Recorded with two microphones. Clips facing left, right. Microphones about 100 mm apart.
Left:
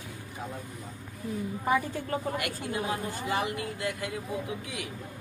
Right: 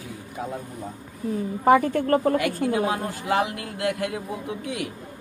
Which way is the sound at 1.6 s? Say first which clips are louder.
Right 11 dB; 65° right (ahead or behind).